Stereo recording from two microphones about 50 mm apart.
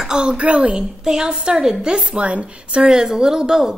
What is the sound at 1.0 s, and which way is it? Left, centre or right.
A woman's voice, centre.